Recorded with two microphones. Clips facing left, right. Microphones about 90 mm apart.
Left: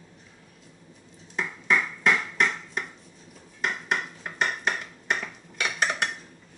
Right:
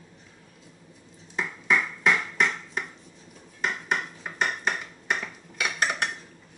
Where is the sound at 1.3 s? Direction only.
Centre (ahead or behind).